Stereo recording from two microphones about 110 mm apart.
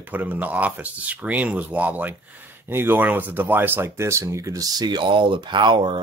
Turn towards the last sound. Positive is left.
turn(degrees=-45)  # may be behind; listen again after turning